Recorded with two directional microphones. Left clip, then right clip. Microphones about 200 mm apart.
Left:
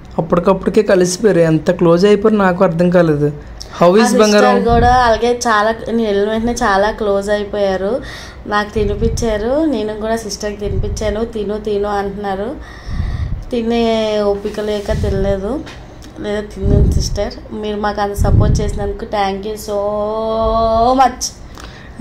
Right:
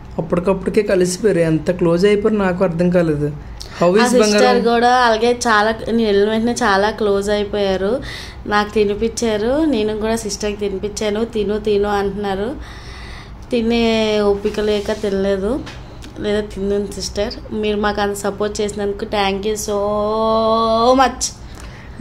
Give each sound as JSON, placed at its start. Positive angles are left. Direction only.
{"t": 0.1, "sound": "speech", "side_deg": 10}
{"t": 4.4, "sound": "a woman's voice", "side_deg": -15}
{"t": 13.5, "sound": "a woman's voice", "side_deg": -15}